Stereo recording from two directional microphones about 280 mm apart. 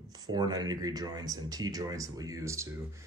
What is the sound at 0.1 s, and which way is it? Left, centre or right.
Speech, centre.